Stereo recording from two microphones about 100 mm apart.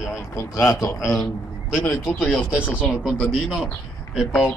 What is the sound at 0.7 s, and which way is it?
Speech, 30° left (ahead or behind).